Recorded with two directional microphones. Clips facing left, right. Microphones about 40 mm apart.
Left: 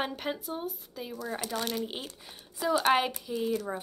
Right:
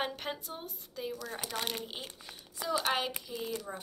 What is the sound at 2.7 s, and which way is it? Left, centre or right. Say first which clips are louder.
Speech: left 6 dB; centre.